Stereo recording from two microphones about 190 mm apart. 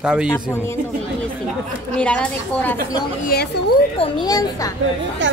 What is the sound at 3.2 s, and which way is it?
Speech, 55° left (ahead or behind).